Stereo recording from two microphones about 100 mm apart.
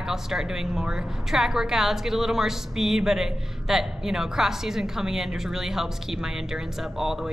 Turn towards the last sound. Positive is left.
turn(degrees=-5)  # may be behind; listen again after turning